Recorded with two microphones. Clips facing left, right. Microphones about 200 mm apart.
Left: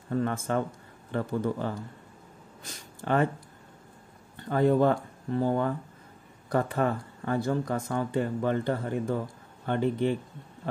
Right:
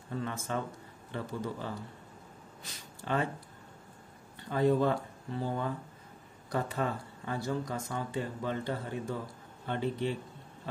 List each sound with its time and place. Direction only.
0.1 s speech: 55° left (ahead or behind)
4.5 s speech: 55° left (ahead or behind)